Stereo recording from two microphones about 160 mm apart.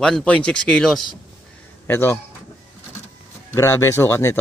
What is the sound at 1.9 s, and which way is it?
Speech, 15° left (ahead or behind).